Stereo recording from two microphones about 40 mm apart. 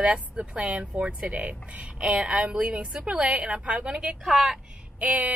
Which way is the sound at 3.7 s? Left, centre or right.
Centre.